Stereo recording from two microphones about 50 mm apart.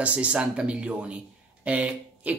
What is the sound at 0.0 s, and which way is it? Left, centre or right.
Speech, right.